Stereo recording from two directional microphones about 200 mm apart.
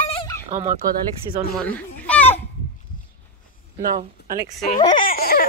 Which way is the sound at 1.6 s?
5° left (ahead or behind).